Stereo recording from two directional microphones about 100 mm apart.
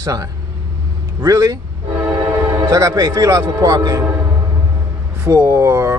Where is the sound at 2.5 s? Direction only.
40° right (ahead or behind).